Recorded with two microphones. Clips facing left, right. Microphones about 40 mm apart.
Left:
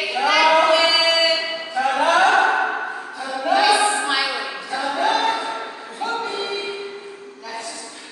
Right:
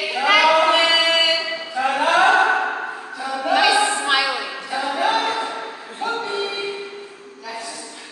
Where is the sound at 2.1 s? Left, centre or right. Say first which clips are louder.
Right 2 dB; centre.